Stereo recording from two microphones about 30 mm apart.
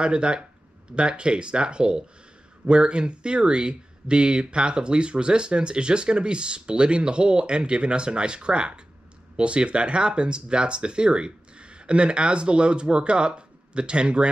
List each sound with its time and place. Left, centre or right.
0.0 s speech: right